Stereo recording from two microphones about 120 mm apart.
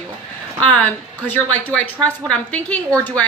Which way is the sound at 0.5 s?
10° left (ahead or behind).